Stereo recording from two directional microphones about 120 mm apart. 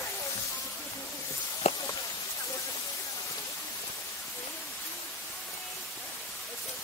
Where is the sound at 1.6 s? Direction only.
60° left (ahead or behind).